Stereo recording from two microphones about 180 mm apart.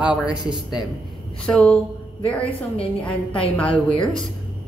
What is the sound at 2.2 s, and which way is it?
Speech, 30° left (ahead or behind).